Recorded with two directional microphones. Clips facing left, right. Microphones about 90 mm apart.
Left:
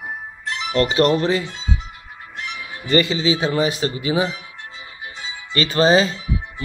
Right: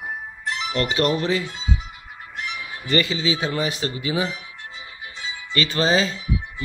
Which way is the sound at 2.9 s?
30° left (ahead or behind).